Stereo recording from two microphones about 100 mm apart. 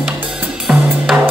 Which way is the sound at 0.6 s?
Centre (ahead or behind).